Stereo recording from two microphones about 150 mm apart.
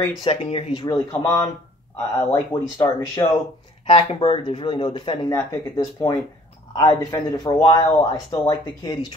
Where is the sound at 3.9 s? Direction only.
35° left (ahead or behind).